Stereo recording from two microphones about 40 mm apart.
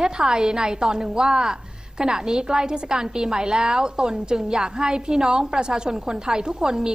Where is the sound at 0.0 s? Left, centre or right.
Centre.